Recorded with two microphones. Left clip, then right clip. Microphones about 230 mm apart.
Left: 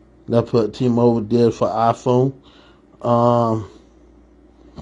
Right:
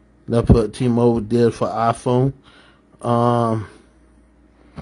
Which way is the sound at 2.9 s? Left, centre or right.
Right.